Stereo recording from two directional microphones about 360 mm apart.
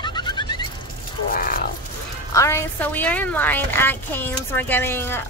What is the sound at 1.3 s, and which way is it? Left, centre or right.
Speech, left.